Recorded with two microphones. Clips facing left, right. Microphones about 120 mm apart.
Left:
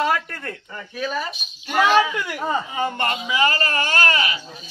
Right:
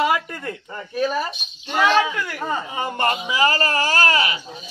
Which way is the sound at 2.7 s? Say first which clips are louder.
Right 1 dB; 25° right (ahead or behind).